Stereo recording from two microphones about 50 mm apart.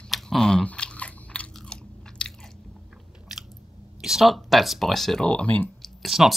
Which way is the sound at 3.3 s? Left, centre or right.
Centre.